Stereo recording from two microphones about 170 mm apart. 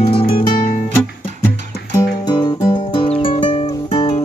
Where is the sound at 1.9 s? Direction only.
25° left (ahead or behind).